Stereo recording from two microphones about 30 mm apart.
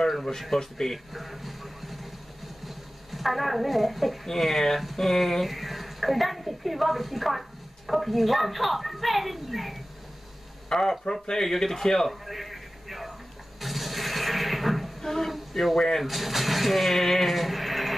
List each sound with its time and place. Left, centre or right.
0.4 s speech: centre
0.9 s a woman's voice: centre
10.7 s speech: centre
12.1 s a sound: centre
15.0 s a sound: centre
15.5 s speech: centre
16.0 s speech: centre